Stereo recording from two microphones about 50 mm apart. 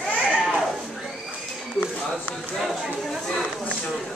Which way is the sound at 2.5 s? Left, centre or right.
Centre.